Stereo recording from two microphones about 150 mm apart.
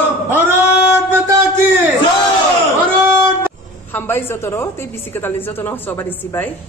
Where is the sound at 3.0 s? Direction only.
15° right (ahead or behind).